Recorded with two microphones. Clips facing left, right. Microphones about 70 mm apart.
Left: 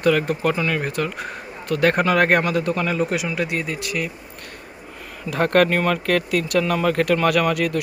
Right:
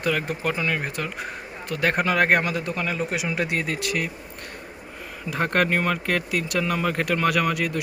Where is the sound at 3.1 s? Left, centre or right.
Right.